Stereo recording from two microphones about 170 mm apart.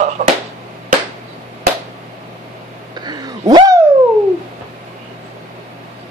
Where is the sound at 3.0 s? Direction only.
25° right (ahead or behind).